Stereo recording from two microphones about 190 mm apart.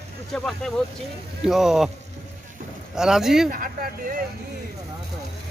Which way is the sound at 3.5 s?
45° right (ahead or behind).